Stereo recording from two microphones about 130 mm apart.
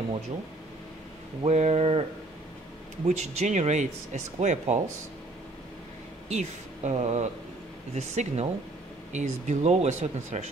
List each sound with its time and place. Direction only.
1.4 s speech: 60° right (ahead or behind)
3.1 s speech: 60° right (ahead or behind)
6.2 s speech: 60° right (ahead or behind)